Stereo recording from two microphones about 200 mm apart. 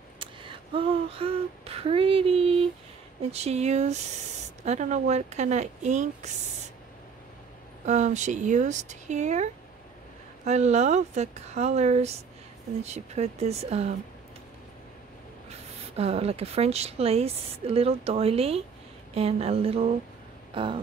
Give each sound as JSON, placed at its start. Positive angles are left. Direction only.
{"t": 0.2, "sound": "a sound", "side_deg": -25}
{"t": 3.2, "sound": "speech", "side_deg": -30}
{"t": 7.8, "sound": "speech", "side_deg": -35}
{"t": 16.0, "sound": "speech", "side_deg": -30}